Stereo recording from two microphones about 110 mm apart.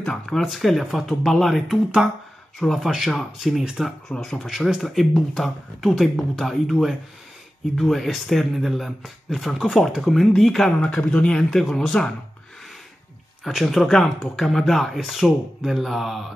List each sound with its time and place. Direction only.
0.0 s speech: 5° left (ahead or behind)
13.4 s speech: centre (ahead or behind)